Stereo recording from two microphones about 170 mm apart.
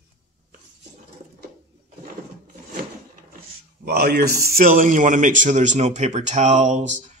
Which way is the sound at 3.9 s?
65° right (ahead or behind).